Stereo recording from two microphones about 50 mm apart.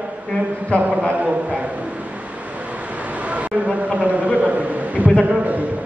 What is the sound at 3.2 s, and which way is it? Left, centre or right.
A man's voice, right.